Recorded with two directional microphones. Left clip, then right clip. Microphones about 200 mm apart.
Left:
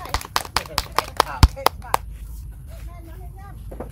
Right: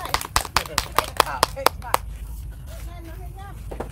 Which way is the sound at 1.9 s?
30° left (ahead or behind).